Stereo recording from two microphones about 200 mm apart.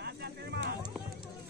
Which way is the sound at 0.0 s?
55° right (ahead or behind).